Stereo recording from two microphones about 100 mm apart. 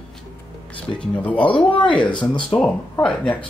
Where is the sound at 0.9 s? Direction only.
10° left (ahead or behind).